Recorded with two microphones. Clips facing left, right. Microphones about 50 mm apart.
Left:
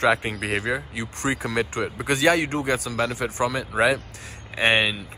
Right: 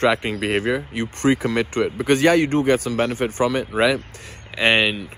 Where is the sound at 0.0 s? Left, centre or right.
Right.